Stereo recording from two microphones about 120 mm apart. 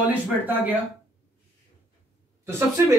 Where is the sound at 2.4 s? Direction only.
20° right (ahead or behind).